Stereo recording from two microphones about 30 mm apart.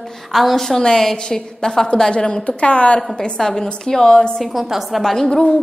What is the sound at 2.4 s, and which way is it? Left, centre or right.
Speech, left.